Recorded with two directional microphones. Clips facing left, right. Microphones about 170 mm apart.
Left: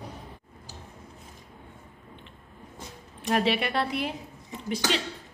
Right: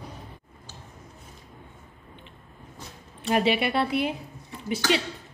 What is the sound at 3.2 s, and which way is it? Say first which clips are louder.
Speech: right 2 dB; 5° right (ahead or behind).